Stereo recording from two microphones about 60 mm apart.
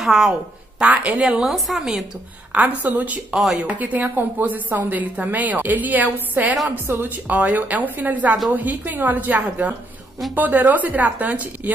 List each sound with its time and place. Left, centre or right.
0.0 s a woman's voice: centre
0.8 s a woman's voice: right
1.2 s a woman's voice: centre
2.5 s a woman's voice: right
3.3 s a woman's voice: centre
3.6 s a woman's voice: right